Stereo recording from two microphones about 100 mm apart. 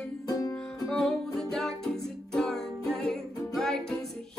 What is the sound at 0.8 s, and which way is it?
Music, 5° left (ahead or behind).